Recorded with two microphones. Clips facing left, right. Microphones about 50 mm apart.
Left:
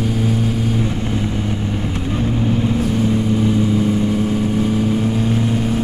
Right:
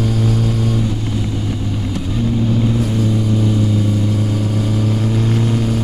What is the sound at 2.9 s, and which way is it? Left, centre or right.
Vehicle, left.